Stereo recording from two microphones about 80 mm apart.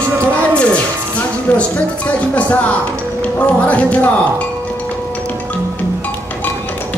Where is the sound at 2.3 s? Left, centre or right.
Centre.